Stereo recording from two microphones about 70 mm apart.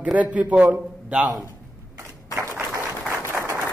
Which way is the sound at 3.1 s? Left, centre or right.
Right.